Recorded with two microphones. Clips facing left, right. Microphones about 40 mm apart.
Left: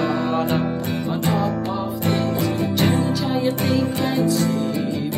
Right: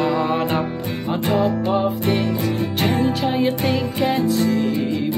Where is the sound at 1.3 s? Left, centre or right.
Right.